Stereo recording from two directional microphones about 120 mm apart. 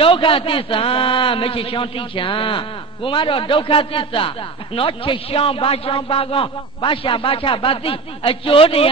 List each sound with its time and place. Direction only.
0.0 s a man's voice: 45° left (ahead or behind)